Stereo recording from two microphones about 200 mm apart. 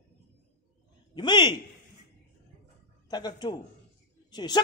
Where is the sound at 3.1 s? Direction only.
20° left (ahead or behind).